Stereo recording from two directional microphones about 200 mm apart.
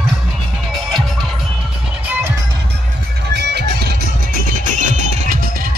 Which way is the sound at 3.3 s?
55° right (ahead or behind).